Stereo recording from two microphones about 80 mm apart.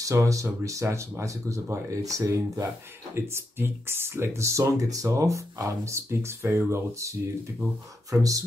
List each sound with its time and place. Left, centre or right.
0.0 s speech: right
3.2 s speech: right